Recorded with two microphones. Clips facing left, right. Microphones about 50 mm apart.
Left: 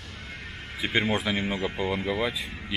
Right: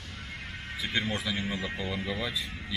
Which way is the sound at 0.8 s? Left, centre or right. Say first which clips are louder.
Left 6 dB; left.